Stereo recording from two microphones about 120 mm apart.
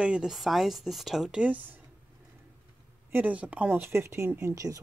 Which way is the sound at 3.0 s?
15° right (ahead or behind).